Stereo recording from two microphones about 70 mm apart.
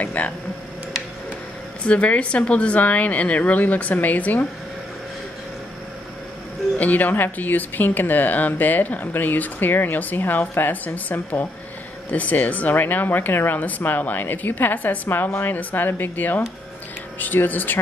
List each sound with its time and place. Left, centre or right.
0.0 s speech: left
1.9 s speech: centre
6.8 s speech: left
12.1 s speech: left